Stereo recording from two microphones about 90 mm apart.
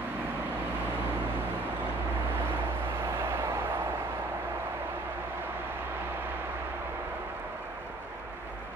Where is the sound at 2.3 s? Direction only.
25° right (ahead or behind).